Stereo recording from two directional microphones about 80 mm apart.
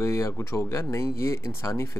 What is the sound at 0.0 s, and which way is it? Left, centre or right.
Speech, left.